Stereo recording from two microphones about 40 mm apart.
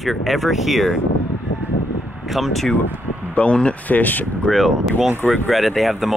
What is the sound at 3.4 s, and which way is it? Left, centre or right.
Speech, left.